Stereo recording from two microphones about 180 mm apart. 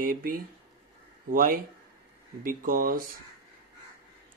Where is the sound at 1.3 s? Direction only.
50° right (ahead or behind).